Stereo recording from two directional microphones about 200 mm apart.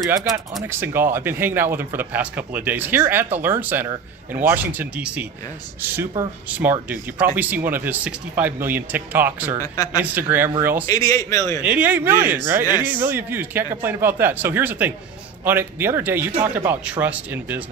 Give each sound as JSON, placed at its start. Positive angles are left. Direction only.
{"t": 0.1, "sound": "speech", "side_deg": -15}
{"t": 10.9, "sound": "a man's voice", "side_deg": 15}
{"t": 11.6, "sound": "speech", "side_deg": -10}